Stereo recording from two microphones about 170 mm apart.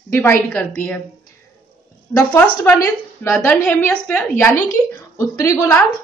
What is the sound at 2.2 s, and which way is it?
A woman's voice, 10° left (ahead or behind).